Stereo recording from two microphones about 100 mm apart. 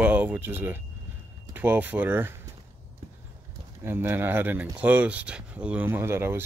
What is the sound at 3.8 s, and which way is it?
Speech, 20° right (ahead or behind).